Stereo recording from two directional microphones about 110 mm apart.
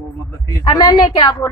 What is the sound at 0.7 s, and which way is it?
Speech, 40° left (ahead or behind).